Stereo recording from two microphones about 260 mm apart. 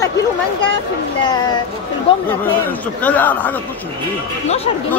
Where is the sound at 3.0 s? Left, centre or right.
Centre.